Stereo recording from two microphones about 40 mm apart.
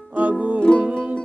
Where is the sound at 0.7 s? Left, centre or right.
Left.